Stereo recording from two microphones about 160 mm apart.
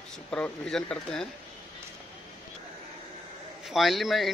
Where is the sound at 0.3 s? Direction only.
5° left (ahead or behind).